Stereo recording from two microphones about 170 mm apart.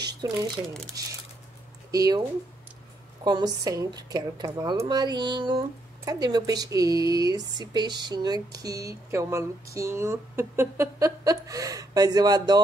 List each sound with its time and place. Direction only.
0.2 s speech: 20° right (ahead or behind)
1.9 s speech: 20° right (ahead or behind)
3.3 s speech: 25° right (ahead or behind)